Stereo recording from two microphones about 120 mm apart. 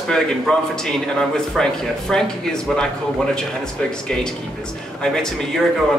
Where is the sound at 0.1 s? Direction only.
5° left (ahead or behind).